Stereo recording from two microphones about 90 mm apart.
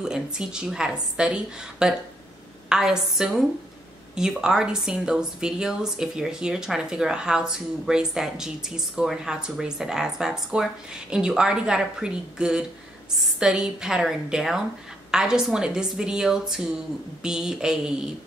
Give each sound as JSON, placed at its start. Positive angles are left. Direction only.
{"t": 0.0, "sound": "a woman's voice", "side_deg": -5}